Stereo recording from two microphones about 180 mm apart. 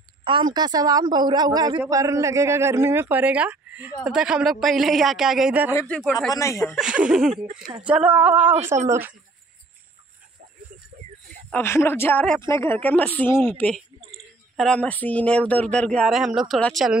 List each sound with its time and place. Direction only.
0.2 s a woman's voice: 25° right (ahead or behind); by 5.8 s 10° right (ahead or behind)
6.3 s speech: 15° left (ahead or behind)
6.6 s speech: centre (ahead or behind)
11.5 s speech: 15° left (ahead or behind)